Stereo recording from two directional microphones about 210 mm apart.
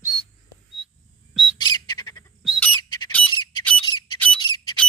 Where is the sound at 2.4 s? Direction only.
5° left (ahead or behind).